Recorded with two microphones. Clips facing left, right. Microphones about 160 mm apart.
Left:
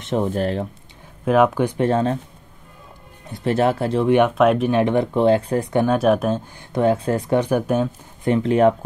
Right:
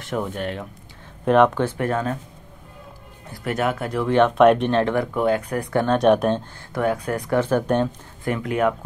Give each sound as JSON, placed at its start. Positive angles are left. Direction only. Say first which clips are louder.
{"t": 0.0, "sound": "speech", "louder": "left 5 dB", "side_deg": 25}
{"t": 1.2, "sound": "speech", "louder": "even", "side_deg": 5}
{"t": 1.8, "sound": "speech", "louder": "left 8 dB", "side_deg": 30}
{"t": 3.3, "sound": "speech", "louder": "left 5 dB", "side_deg": 30}
{"t": 4.4, "sound": "speech", "louder": "right 1 dB", "side_deg": 0}
{"t": 5.9, "sound": "speech", "louder": "right 3 dB", "side_deg": 5}
{"t": 6.7, "sound": "speech", "louder": "left 4 dB", "side_deg": 25}
{"t": 8.2, "sound": "speech", "louder": "left 6 dB", "side_deg": 25}